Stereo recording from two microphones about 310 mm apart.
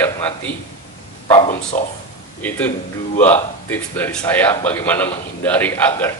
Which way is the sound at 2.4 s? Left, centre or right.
Centre.